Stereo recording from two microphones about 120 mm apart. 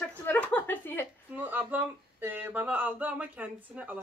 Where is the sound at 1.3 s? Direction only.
15° right (ahead or behind).